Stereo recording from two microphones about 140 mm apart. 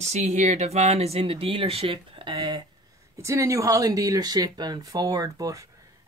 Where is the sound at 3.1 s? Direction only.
20° right (ahead or behind).